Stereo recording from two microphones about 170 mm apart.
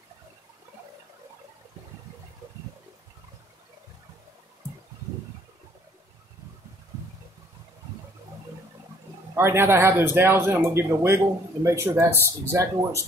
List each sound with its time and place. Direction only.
9.3 s speech: 15° right (ahead or behind)